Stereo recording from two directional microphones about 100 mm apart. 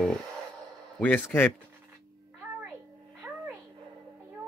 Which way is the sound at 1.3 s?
15° left (ahead or behind).